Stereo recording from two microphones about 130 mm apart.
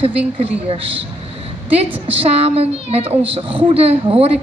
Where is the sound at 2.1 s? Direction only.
45° right (ahead or behind).